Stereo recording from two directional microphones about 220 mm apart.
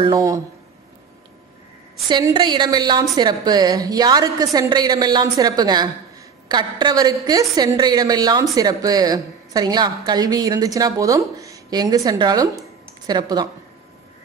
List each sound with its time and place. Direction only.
0.0 s a woman's voice: 15° right (ahead or behind)
2.0 s a woman's voice: 20° right (ahead or behind)